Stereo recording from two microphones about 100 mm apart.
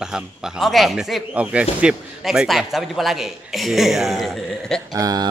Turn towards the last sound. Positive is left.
turn(degrees=-40)  # may be behind; listen again after turning